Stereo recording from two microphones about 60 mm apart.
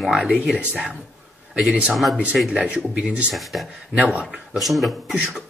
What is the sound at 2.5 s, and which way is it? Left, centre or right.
Speech, centre.